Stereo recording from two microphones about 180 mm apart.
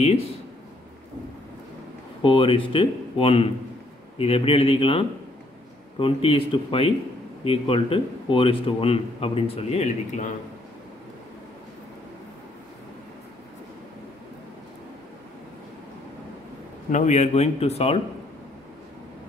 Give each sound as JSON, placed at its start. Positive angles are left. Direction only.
{"t": 0.0, "sound": "a man's voice", "side_deg": 35}
{"t": 2.2, "sound": "a man's voice", "side_deg": 30}
{"t": 16.9, "sound": "a man's voice", "side_deg": 40}